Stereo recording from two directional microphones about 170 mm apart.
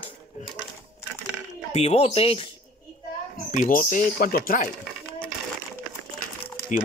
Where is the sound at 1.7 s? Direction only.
40° left (ahead or behind).